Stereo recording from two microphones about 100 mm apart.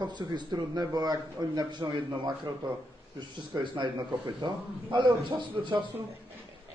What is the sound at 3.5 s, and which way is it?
Speech, 35° right (ahead or behind).